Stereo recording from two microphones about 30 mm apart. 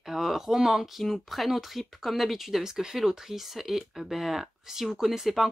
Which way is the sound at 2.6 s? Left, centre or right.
Centre.